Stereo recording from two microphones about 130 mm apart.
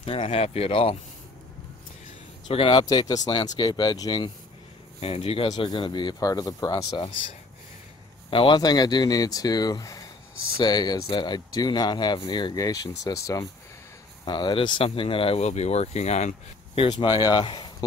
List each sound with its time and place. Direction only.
0.0 s speech: 45° left (ahead or behind)
2.4 s speech: 40° left (ahead or behind)
5.0 s speech: 50° left (ahead or behind)
5.5 s speech: 35° left (ahead or behind)
8.3 s speech: 40° left (ahead or behind)
14.2 s speech: 35° left (ahead or behind)